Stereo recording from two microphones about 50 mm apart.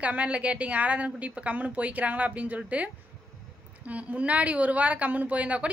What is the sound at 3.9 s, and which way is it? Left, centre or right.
Speech, right.